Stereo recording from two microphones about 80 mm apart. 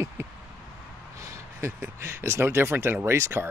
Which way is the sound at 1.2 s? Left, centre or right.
Right.